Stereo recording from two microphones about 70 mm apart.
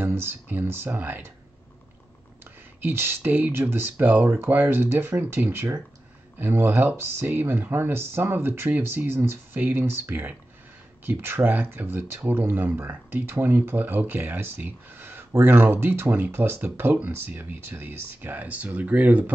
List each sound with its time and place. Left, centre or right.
0.0 s speech: right
2.4 s speech: right